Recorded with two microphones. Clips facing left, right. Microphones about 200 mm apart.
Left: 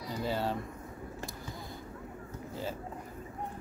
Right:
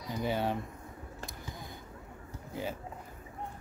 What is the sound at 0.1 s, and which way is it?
Speech, 20° right (ahead or behind).